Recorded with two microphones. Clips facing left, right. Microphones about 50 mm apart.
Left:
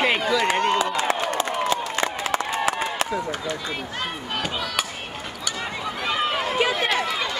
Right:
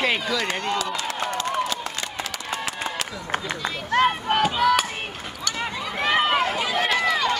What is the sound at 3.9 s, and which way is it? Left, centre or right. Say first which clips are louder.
Speech: right 10 dB; right.